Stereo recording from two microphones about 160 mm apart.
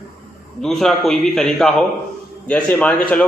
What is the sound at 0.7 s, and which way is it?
A man's voice, centre (ahead or behind).